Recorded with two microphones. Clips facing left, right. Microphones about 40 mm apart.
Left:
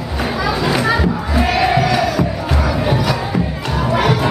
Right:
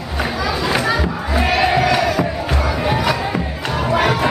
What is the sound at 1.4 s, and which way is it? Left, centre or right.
Crowd, centre.